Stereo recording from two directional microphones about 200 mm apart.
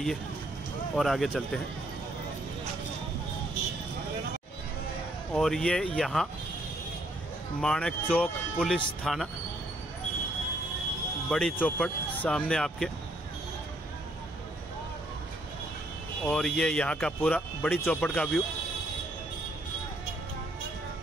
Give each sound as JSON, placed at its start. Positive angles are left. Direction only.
{"t": 0.9, "sound": "speech", "side_deg": 0}
{"t": 5.3, "sound": "speech", "side_deg": 0}
{"t": 7.6, "sound": "speech", "side_deg": 5}
{"t": 11.2, "sound": "speech", "side_deg": 5}
{"t": 16.3, "sound": "speech", "side_deg": 5}